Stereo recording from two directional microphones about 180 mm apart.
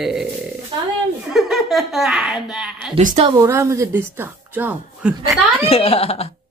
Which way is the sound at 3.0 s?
45° right (ahead or behind).